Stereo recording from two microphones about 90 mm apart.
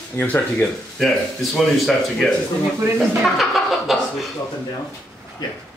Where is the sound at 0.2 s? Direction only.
20° left (ahead or behind).